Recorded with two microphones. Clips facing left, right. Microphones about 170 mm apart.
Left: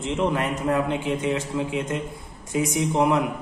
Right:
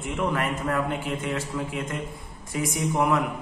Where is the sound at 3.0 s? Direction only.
20° left (ahead or behind).